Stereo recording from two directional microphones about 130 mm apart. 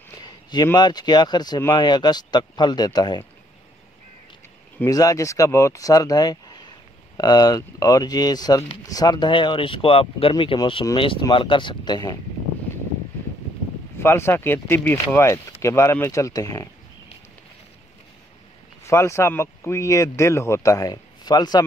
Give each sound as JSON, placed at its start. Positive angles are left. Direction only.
{"t": 0.2, "sound": "a sound", "side_deg": 30}
{"t": 0.7, "sound": "speech", "side_deg": 35}
{"t": 4.8, "sound": "speech", "side_deg": 25}
{"t": 13.9, "sound": "speech", "side_deg": 20}
{"t": 18.9, "sound": "speech", "side_deg": 20}